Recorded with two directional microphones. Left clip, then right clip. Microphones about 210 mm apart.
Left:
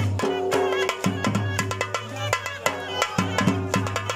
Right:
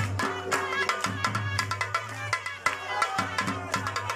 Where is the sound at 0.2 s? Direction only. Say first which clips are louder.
Left 6 dB; 40° left (ahead or behind).